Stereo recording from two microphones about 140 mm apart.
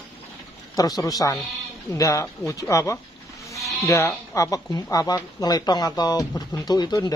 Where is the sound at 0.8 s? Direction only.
25° left (ahead or behind).